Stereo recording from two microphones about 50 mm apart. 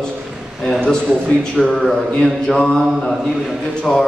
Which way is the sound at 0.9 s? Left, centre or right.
Centre.